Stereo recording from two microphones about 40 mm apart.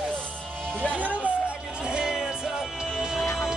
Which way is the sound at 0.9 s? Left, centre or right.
Right.